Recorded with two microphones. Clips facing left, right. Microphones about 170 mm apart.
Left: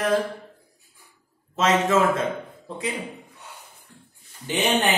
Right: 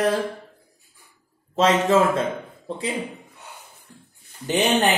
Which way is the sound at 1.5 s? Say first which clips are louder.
Right 2 dB; 30° right (ahead or behind).